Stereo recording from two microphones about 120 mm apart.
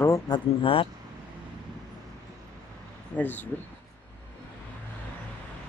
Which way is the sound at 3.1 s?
15° left (ahead or behind).